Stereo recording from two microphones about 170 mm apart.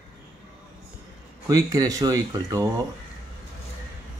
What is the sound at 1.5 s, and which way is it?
Speech, 20° right (ahead or behind).